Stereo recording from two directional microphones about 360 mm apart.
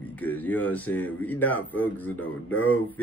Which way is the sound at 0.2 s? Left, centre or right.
Centre.